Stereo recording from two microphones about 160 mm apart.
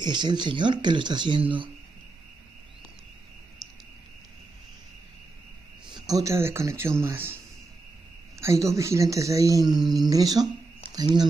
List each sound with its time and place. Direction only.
0.0 s speech: 30° right (ahead or behind)
5.9 s speech: 25° right (ahead or behind)
8.4 s speech: 20° right (ahead or behind)